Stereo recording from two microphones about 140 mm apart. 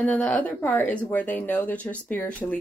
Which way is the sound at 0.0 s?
10° left (ahead or behind).